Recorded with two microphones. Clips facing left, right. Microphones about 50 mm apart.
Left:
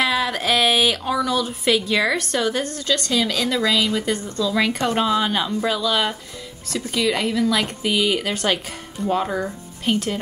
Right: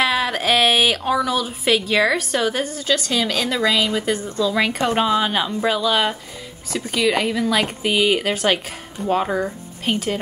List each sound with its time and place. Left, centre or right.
0.0 s speech: centre
8.2 s speech: centre